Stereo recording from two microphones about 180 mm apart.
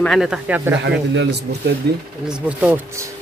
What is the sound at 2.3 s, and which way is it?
Speech, 10° right (ahead or behind).